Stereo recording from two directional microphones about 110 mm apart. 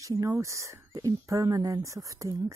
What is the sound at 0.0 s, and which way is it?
Speech, 30° right (ahead or behind).